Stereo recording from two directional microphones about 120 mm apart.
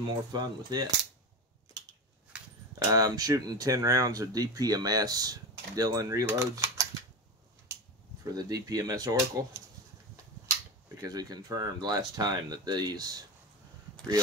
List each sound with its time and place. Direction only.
0.3 s speech: 35° right (ahead or behind)
2.9 s speech: 30° right (ahead or behind)
8.4 s speech: 30° right (ahead or behind)
11.0 s speech: 30° right (ahead or behind)